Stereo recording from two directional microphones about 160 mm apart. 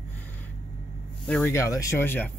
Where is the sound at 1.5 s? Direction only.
20° left (ahead or behind).